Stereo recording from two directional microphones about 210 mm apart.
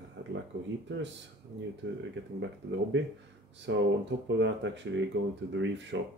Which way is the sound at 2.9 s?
60° right (ahead or behind).